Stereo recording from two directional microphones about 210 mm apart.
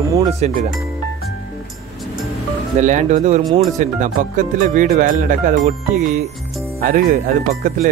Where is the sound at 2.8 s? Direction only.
35° right (ahead or behind).